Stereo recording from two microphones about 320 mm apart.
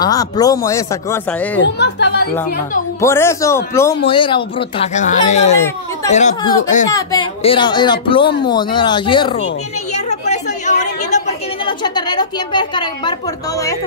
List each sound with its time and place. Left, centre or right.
0.0 s speech: centre
1.8 s speech: left
3.0 s speech: centre
6.9 s speech: centre
10.0 s chatter: left